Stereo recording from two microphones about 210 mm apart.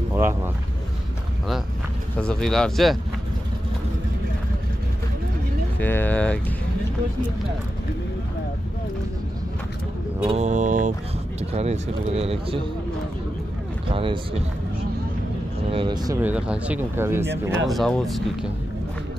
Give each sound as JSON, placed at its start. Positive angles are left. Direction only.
{"t": 0.1, "sound": "speech", "side_deg": -15}
{"t": 2.1, "sound": "speech", "side_deg": 5}
{"t": 5.8, "sound": "speech", "side_deg": 10}
{"t": 10.2, "sound": "mantra", "side_deg": -30}
{"t": 11.5, "sound": "speech", "side_deg": -30}
{"t": 13.9, "sound": "speech", "side_deg": -25}
{"t": 15.7, "sound": "speech", "side_deg": -20}
{"t": 17.6, "sound": "speech", "side_deg": 0}